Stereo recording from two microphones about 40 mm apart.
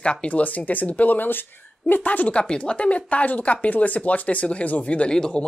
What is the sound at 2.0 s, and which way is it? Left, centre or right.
Speech, left.